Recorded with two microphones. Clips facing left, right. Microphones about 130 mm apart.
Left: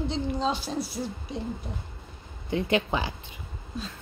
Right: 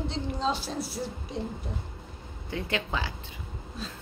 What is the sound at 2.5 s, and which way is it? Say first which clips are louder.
Speech: left 6 dB; 20° left (ahead or behind).